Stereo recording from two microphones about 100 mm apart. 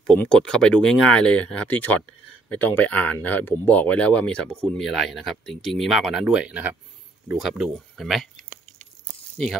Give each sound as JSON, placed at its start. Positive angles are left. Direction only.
{"t": 0.0, "sound": "speech", "side_deg": 10}
{"t": 7.3, "sound": "speech", "side_deg": -5}